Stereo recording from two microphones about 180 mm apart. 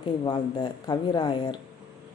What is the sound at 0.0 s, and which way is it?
A woman's voice, 25° left (ahead or behind).